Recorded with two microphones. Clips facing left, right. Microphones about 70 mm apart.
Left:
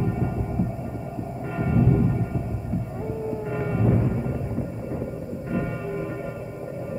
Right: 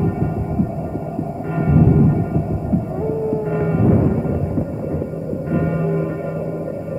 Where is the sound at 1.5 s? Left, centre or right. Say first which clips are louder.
Right 7 dB; right.